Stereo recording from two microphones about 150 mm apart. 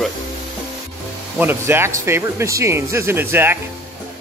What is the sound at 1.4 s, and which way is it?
Speech, 15° right (ahead or behind).